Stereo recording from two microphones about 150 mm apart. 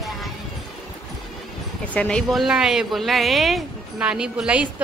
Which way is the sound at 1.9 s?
10° left (ahead or behind).